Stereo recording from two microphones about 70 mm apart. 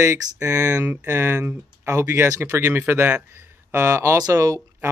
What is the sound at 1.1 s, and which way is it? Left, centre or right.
Speech, right.